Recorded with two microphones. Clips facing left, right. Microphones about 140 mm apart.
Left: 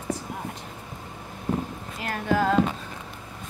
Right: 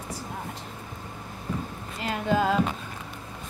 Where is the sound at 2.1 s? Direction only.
20° right (ahead or behind).